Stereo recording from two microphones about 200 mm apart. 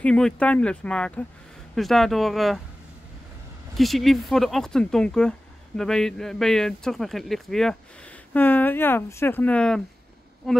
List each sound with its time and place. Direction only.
0.0 s speech: 5° left (ahead or behind)
3.7 s speech: centre (ahead or behind)